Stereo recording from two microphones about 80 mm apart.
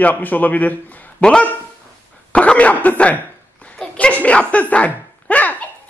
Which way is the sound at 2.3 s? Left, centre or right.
Centre.